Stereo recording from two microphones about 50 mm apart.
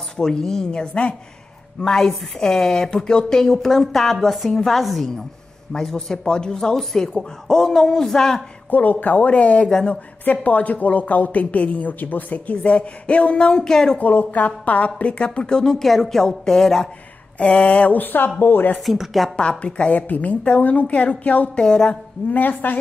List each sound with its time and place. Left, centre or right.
0.2 s speech: centre
1.8 s a woman's voice: centre
8.6 s a woman's voice: left; by 13.9 s centre
13.9 s a woman's voice: left; by 16.9 s centre
17.4 s a woman's voice: left
18.9 s a woman's voice: centre
19.6 s a woman's voice: left
21.5 s speech: centre
22.3 s a woman's voice: left